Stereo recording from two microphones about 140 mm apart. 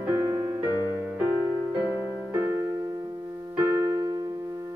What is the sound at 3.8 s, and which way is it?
Keyboard, 30° right (ahead or behind).